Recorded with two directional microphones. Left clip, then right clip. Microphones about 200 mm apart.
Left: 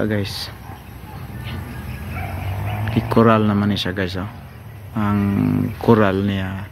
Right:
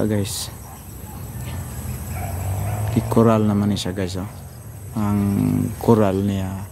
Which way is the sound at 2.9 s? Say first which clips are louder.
Left 2 dB; 5° right (ahead or behind).